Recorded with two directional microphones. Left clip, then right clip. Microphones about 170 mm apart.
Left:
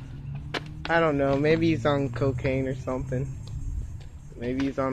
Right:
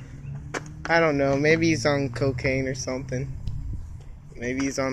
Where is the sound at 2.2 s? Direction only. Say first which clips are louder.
Right 3 dB; 5° right (ahead or behind).